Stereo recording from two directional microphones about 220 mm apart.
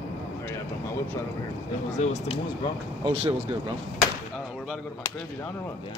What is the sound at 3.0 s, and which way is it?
Speech, 25° right (ahead or behind).